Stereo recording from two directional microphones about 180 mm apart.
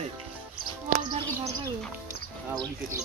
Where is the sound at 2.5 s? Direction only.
15° right (ahead or behind).